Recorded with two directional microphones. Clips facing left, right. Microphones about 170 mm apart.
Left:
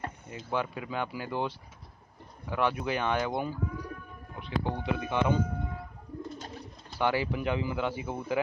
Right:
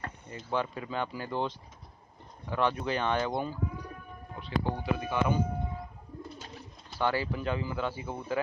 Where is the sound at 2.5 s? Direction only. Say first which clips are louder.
Even; 10° left (ahead or behind).